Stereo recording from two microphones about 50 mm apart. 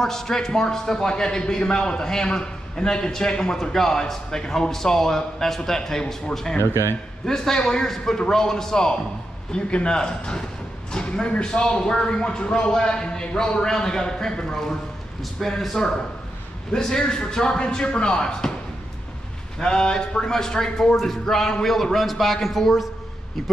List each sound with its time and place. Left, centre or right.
0.0 s a man's voice: centre
6.6 s a man's voice: left
7.2 s a man's voice: centre
19.6 s a man's voice: centre